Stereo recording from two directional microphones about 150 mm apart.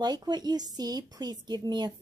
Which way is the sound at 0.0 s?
25° right (ahead or behind).